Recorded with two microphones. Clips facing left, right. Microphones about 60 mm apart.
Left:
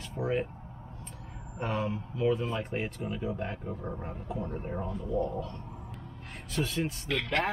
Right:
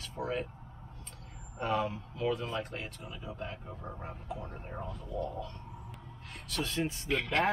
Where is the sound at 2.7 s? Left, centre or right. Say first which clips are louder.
Left 8 dB; left.